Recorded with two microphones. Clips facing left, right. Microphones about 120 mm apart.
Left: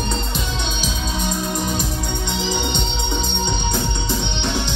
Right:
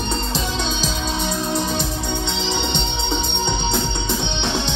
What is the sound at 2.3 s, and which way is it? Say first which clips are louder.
Music: even; 25° right (ahead or behind).